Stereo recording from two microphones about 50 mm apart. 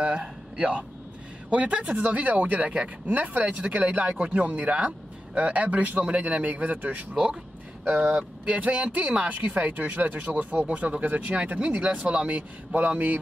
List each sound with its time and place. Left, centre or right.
0.0 s speech: right
8.1 s speech: right